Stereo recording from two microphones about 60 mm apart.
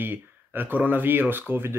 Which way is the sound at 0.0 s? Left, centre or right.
Right.